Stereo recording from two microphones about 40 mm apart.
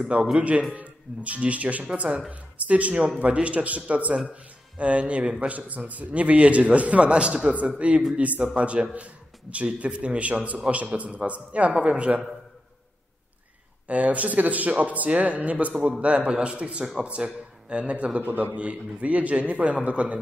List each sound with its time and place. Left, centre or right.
0.0 s a man's voice: right
0.4 s a man's voice: right
13.8 s a man's voice: right
18.2 s a man's voice: right
18.6 s a man's voice: right